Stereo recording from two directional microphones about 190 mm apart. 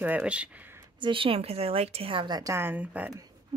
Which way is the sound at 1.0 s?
25° right (ahead or behind).